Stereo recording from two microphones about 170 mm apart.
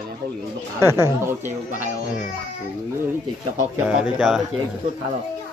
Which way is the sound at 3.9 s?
5° right (ahead or behind).